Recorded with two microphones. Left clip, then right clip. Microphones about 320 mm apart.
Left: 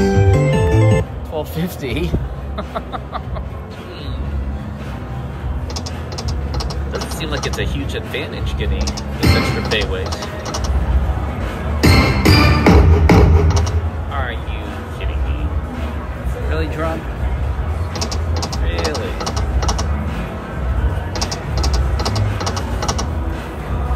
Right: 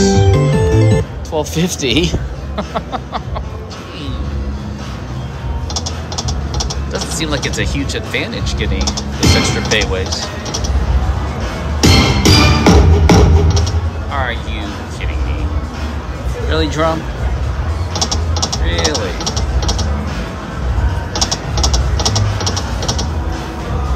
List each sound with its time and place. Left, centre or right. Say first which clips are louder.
0.0 s music: right 3 dB; centre
7.3 s speech: right 2 dB; left
7.6 s speech: right 4 dB; centre
11.8 s music: right 3 dB; centre
16.4 s speech: right 8 dB; centre
17.9 s mechanisms: right 6 dB; centre
19.1 s vehicle: right 3 dB; centre
21.1 s typing: right 7 dB; centre
22.4 s vehicle: right 2 dB; centre